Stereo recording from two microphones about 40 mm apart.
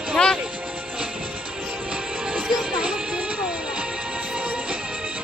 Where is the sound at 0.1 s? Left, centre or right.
Centre.